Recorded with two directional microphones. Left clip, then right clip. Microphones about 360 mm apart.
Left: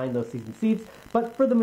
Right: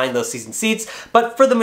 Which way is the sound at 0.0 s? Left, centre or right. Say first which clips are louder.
Right 9 dB; centre.